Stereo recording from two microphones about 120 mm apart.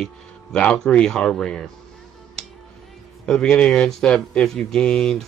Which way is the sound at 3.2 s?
5° left (ahead or behind).